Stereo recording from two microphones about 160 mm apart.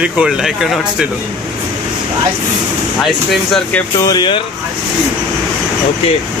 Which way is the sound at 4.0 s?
25° left (ahead or behind).